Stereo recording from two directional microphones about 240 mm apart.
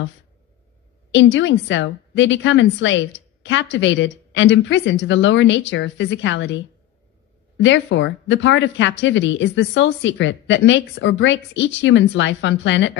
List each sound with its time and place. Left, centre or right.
1.1 s speech: left